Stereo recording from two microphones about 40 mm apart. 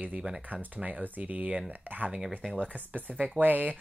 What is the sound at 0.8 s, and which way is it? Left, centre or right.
Speech, right.